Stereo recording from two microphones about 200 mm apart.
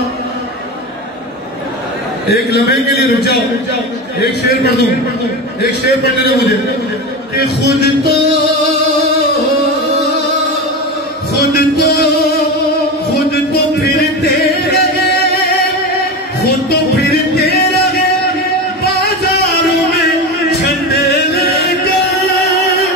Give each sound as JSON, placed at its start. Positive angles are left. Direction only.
{"t": 2.3, "sound": "a man's voice", "side_deg": 55}
{"t": 7.8, "sound": "music", "side_deg": 55}
{"t": 11.5, "sound": "music", "side_deg": 50}
{"t": 13.9, "sound": "music", "side_deg": 55}
{"t": 16.6, "sound": "music", "side_deg": 60}
{"t": 19.4, "sound": "music", "side_deg": 55}